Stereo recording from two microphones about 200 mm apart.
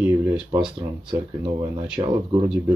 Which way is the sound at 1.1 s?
25° right (ahead or behind).